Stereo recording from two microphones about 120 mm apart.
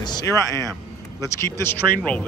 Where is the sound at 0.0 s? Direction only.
30° left (ahead or behind).